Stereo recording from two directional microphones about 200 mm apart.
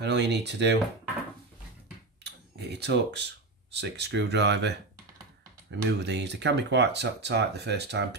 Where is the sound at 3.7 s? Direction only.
60° right (ahead or behind).